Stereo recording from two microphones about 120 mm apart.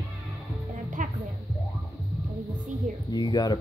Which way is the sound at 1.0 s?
90° right.